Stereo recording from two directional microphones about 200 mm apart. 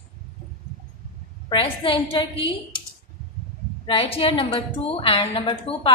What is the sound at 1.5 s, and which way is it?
A woman's voice, 25° left (ahead or behind).